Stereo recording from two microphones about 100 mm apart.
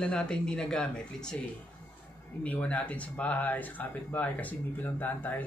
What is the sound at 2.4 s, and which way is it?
Speech, 15° left (ahead or behind).